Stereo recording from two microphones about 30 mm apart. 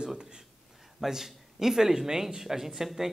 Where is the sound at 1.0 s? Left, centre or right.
Centre.